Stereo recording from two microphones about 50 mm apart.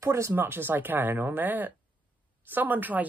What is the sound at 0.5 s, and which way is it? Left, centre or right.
Speech, right.